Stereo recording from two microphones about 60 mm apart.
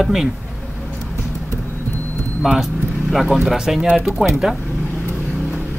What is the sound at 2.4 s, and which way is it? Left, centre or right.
Speech, centre.